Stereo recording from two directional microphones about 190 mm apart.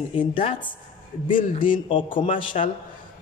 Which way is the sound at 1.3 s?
45° left (ahead or behind).